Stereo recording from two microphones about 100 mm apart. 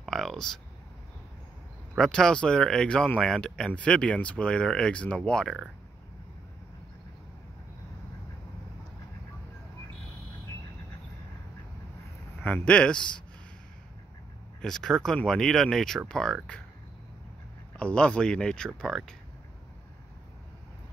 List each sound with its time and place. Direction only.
0.0 s a sound: centre (ahead or behind)
2.0 s speech: 5° left (ahead or behind)
12.4 s speech: 15° left (ahead or behind)
14.6 s speech: 5° left (ahead or behind)
17.7 s speech: 10° left (ahead or behind)